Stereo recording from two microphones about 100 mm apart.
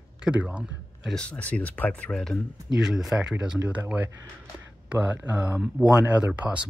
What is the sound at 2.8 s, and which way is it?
Speech, centre (ahead or behind).